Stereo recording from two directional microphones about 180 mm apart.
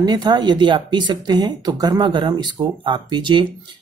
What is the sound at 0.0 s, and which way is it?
Speech, 25° right (ahead or behind).